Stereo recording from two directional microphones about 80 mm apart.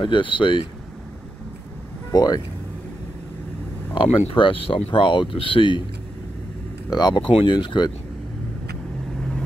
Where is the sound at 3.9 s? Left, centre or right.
Left.